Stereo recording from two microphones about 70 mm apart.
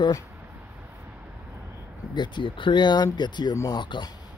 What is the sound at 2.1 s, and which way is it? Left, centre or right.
Speech, left.